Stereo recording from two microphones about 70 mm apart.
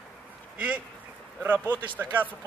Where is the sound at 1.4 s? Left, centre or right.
Right.